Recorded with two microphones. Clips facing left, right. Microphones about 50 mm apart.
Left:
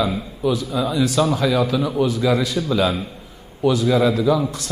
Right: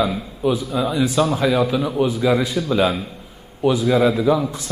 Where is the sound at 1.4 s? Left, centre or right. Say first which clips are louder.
Right 1 dB; right.